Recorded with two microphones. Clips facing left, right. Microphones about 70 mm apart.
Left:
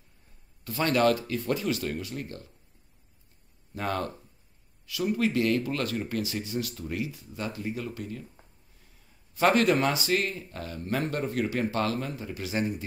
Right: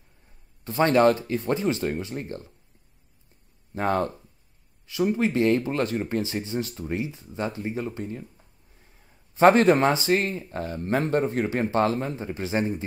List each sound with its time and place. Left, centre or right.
0.7 s speech: right
3.7 s speech: right
9.3 s speech: right